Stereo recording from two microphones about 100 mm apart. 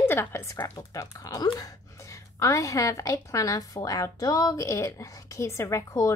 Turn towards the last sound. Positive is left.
turn(degrees=35)  # may be behind; listen again after turning